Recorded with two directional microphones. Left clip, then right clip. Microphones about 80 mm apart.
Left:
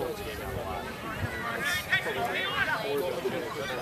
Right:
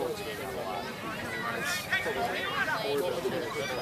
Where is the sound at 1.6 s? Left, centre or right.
Centre.